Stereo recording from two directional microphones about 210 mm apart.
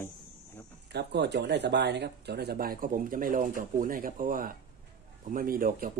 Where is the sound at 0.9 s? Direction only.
55° right (ahead or behind).